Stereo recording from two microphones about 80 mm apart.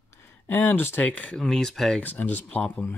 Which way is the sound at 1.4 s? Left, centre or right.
Centre.